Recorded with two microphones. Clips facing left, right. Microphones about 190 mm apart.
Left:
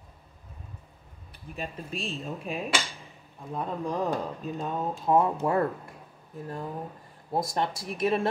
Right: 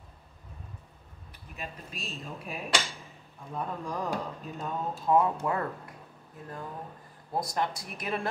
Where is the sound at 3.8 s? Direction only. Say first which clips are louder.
Left 6 dB; 20° left (ahead or behind).